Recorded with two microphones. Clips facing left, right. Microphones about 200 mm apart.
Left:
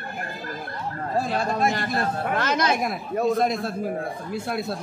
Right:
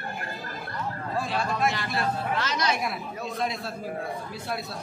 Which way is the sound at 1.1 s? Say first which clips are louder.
Left 5 dB; 40° left (ahead or behind).